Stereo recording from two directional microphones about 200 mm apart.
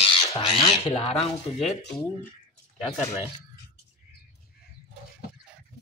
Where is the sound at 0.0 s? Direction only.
25° left (ahead or behind).